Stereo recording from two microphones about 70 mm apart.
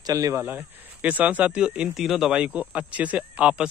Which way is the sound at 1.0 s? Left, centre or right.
Right.